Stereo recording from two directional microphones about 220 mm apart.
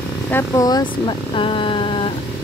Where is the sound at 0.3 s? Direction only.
15° left (ahead or behind).